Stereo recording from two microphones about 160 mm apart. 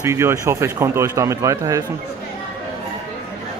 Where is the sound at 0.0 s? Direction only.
15° right (ahead or behind).